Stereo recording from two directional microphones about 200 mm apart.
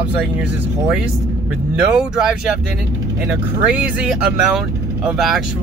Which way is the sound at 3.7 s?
5° right (ahead or behind).